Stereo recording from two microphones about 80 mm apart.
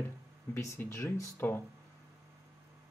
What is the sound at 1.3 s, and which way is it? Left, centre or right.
Speech, left.